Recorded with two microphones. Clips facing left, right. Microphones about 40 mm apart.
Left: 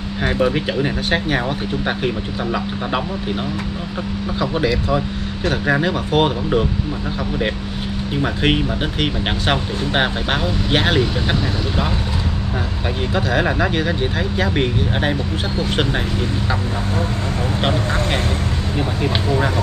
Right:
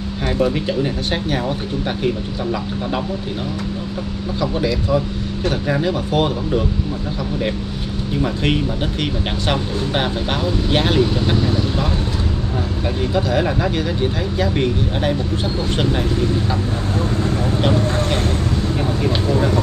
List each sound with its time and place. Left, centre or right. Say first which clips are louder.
0.2 s speech: left 1 dB; left
4.4 s speech: left 1 dB; left
8.1 s speech: left 1 dB; left
17.6 s speech: even; left